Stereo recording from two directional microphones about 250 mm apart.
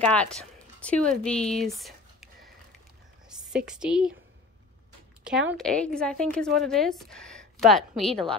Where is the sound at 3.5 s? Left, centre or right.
Centre.